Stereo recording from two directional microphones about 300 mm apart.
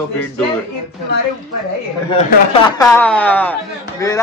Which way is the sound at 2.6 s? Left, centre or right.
Centre.